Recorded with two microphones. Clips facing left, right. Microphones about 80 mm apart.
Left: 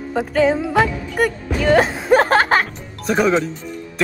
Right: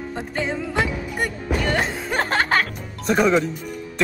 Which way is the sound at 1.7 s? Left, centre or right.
Left.